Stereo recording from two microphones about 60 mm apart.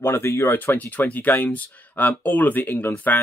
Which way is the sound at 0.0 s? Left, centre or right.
Left.